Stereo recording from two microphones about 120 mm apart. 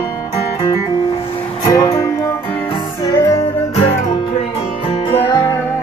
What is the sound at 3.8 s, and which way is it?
Music, 60° left (ahead or behind).